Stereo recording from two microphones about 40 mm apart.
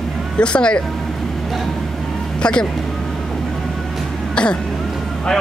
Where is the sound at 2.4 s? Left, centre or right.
Left.